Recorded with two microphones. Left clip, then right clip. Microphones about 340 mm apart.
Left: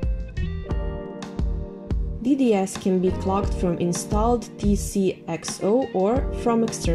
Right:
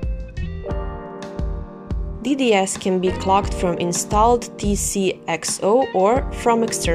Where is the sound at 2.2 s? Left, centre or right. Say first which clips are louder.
Right 3 dB; right.